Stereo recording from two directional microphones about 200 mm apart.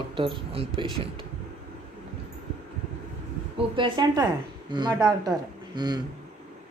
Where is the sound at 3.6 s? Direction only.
25° right (ahead or behind).